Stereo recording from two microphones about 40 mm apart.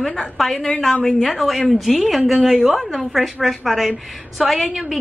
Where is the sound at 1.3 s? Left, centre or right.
Centre.